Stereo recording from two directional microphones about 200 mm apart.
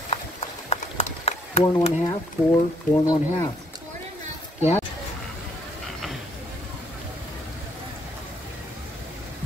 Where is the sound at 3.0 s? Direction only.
15° left (ahead or behind).